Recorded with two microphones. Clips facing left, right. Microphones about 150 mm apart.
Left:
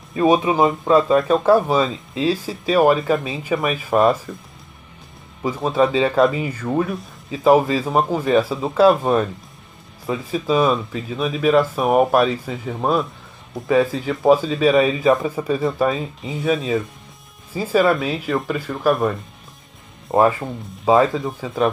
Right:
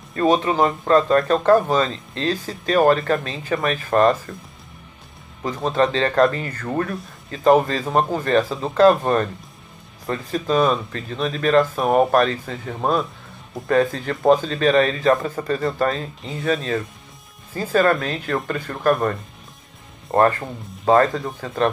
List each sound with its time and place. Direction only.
0.1 s speech: 10° left (ahead or behind)
5.4 s speech: 5° left (ahead or behind)